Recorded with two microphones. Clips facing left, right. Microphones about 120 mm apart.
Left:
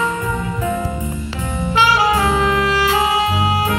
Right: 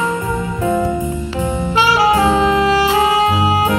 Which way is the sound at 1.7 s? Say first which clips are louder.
Right 2 dB; 35° right (ahead or behind).